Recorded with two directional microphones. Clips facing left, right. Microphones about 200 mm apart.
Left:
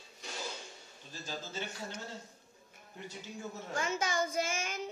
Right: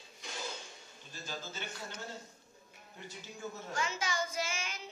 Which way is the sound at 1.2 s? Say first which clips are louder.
Left 2 dB; 30° left (ahead or behind).